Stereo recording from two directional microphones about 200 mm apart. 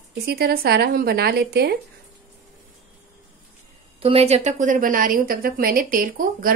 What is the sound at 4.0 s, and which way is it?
Speech, 30° right (ahead or behind).